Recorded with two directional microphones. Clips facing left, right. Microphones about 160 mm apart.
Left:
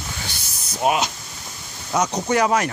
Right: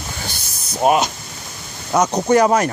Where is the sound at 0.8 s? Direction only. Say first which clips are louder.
Right 5 dB; 45° right (ahead or behind).